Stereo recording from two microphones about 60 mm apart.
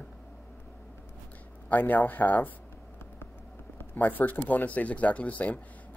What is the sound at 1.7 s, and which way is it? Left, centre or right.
Speech, left.